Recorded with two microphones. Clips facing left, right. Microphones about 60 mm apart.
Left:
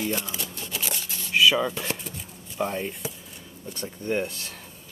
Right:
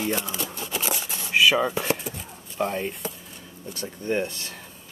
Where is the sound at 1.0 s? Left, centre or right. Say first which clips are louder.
Right 3 dB; right.